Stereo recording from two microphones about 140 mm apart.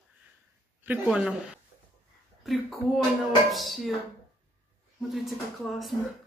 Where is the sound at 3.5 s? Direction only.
Centre (ahead or behind).